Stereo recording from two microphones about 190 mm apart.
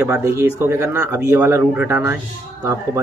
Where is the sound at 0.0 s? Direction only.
10° right (ahead or behind).